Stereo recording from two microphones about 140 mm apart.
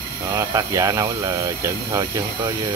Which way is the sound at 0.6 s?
25° right (ahead or behind).